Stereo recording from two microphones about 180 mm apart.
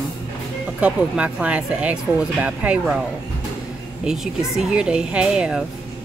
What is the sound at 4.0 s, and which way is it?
Speech, 5° right (ahead or behind).